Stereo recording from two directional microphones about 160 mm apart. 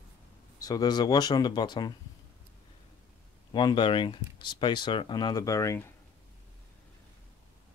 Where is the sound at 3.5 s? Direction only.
30° left (ahead or behind).